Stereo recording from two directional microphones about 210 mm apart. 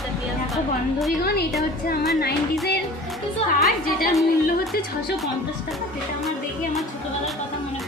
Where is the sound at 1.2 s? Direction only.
50° left (ahead or behind).